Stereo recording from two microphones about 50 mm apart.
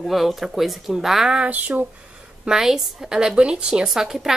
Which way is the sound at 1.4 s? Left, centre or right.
Right.